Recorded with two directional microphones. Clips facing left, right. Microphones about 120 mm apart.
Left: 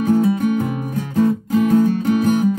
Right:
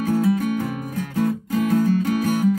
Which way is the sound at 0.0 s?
25° left (ahead or behind).